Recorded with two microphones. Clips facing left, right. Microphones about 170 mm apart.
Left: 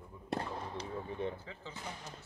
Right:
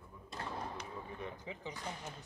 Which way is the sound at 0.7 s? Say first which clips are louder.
Left 5 dB; 30° left (ahead or behind).